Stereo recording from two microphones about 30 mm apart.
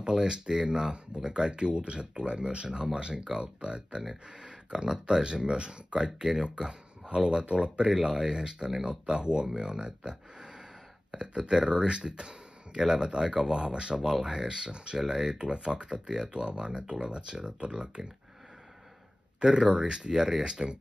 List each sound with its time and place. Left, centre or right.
0.0 s speech: right
4.7 s speech: centre
5.0 s speech: right
7.9 s speech: right
15.0 s speech: centre
15.3 s speech: right
19.4 s speech: right